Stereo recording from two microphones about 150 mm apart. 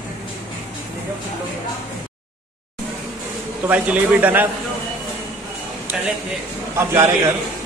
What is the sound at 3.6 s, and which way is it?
Speech, 10° right (ahead or behind).